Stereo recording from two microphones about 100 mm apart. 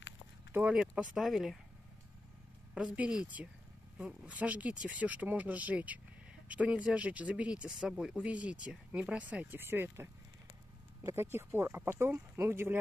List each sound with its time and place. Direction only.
0.5 s speech: 15° right (ahead or behind)
0.7 s speech: 5° right (ahead or behind)
2.7 s speech: 10° right (ahead or behind)
11.1 s speech: 25° right (ahead or behind)